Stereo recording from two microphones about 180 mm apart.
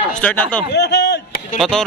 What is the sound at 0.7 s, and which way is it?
Speech, 70° left (ahead or behind).